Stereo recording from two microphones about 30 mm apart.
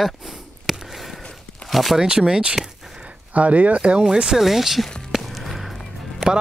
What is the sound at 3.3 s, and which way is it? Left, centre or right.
Speech, right.